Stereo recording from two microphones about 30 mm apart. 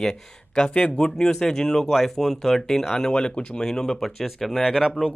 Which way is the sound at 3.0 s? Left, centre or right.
Left.